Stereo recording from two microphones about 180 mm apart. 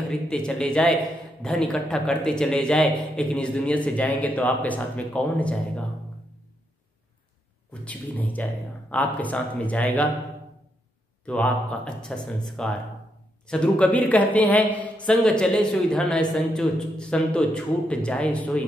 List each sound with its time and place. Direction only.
0.1 s a man's voice: 5° left (ahead or behind)
7.8 s a woman's voice: 10° left (ahead or behind)
11.2 s a woman's voice: 10° left (ahead or behind)